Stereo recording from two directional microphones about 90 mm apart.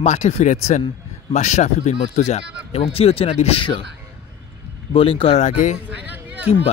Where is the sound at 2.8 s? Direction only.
90° left.